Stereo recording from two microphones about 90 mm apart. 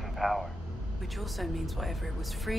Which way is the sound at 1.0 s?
Centre (ahead or behind).